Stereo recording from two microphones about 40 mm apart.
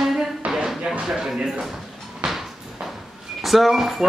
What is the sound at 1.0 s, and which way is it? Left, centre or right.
Speech, centre.